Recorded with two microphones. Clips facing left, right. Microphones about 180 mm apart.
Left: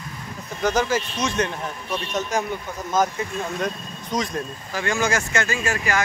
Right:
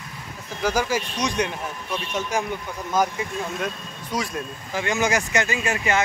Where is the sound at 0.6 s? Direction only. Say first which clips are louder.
Left 2 dB; 10° right (ahead or behind).